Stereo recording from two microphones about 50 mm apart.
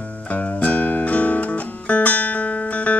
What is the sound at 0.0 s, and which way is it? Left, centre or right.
Music, left.